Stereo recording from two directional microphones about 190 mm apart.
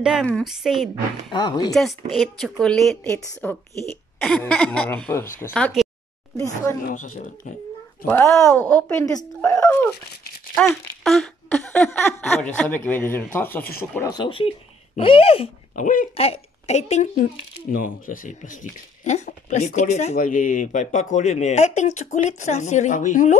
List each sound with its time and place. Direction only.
0.0 s a woman's voice: 5° right (ahead or behind)
1.3 s speech: 20° left (ahead or behind)
1.7 s a woman's voice: centre (ahead or behind)
6.3 s speech: 15° left (ahead or behind)
6.9 s speech: 45° left (ahead or behind)
8.1 s speech: 15° left (ahead or behind)
10.5 s a sound: 5° left (ahead or behind)
12.5 s speech: 5° left (ahead or behind)
13.9 s speech: 20° left (ahead or behind)
15.7 s speech: 45° left (ahead or behind)
16.2 s speech: 35° left (ahead or behind)